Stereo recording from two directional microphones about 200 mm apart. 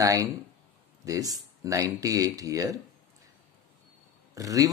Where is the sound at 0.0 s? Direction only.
15° right (ahead or behind).